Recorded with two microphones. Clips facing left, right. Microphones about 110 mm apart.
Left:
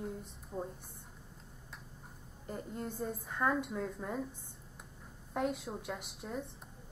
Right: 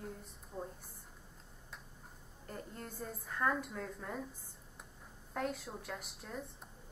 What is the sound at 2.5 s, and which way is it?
A woman's voice, 10° left (ahead or behind).